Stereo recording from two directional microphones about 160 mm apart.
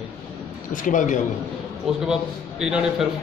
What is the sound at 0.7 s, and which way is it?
Speech, 55° left (ahead or behind).